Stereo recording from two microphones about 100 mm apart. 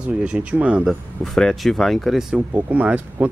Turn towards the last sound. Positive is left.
turn(degrees=-15)  # may be behind; listen again after turning